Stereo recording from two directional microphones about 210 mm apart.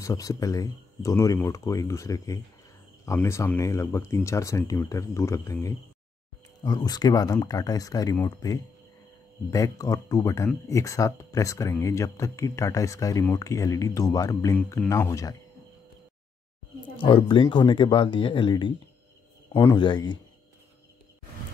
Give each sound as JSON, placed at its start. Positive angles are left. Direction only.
{"t": 0.0, "sound": "speech", "side_deg": 15}
{"t": 17.0, "sound": "speech", "side_deg": 25}